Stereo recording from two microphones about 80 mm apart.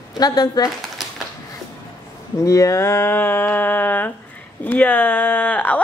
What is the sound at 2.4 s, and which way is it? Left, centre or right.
A woman's voice, left.